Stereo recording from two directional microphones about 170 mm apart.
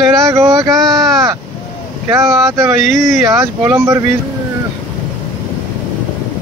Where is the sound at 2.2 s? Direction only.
Centre (ahead or behind).